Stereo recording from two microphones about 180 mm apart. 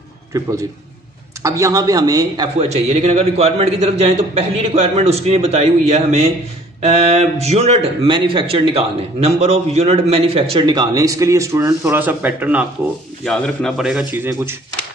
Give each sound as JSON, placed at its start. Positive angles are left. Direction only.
{"t": 1.4, "sound": "speech", "side_deg": -15}
{"t": 2.7, "sound": "a man's voice", "side_deg": -35}
{"t": 13.2, "sound": "a man's voice", "side_deg": 5}